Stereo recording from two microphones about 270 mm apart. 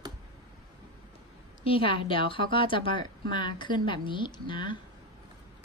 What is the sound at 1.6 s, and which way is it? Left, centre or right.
A woman's voice, centre.